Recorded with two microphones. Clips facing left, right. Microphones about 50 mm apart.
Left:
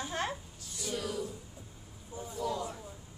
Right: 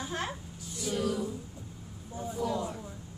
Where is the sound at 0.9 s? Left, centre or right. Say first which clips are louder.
Right 5 dB; right.